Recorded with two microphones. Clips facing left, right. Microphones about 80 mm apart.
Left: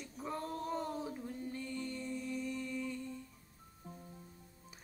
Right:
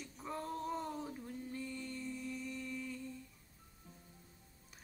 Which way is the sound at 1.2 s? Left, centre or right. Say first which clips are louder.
Left 2 dB; centre.